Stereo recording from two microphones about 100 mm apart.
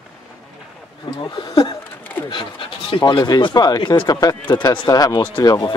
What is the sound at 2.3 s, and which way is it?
Speech, 55° left (ahead or behind).